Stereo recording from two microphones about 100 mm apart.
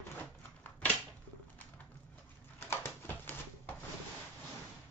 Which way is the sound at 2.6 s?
25° left (ahead or behind).